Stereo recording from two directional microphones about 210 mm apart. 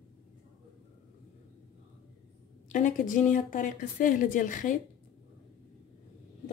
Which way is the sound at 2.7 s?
35° left (ahead or behind).